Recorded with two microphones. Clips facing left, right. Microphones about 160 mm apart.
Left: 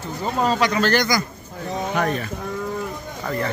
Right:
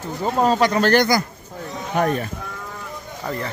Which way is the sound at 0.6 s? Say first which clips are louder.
Right 3 dB; 50° right (ahead or behind).